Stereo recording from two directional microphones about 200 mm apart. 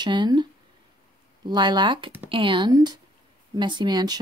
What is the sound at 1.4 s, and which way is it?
Speech, 20° right (ahead or behind).